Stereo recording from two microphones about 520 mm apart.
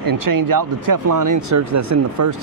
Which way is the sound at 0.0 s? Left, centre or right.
Right.